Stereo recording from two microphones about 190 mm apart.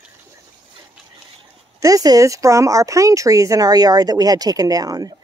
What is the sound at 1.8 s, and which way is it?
Speech, 20° right (ahead or behind).